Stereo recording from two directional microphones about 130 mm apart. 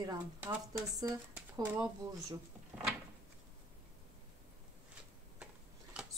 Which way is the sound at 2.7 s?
15° right (ahead or behind).